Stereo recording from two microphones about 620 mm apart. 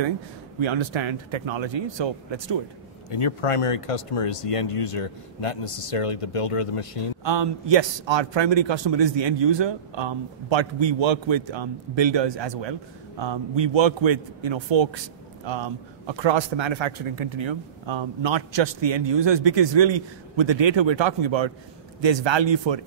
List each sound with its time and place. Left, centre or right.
0.6 s a man's voice: right
3.1 s speech: left
7.2 s a man's voice: right